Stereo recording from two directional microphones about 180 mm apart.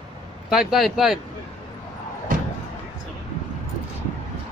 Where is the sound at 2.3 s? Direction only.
50° right (ahead or behind).